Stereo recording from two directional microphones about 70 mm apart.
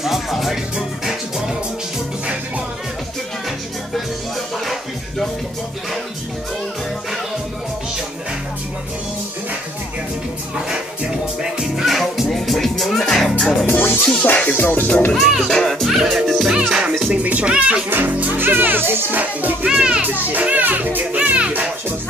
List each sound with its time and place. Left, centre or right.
0.0 s music: centre
10.7 s music: centre
13.7 s speech: left
14.2 s music: left
15.1 s music: centre
16.5 s speech: centre
17.8 s speech: right
19.7 s speech: centre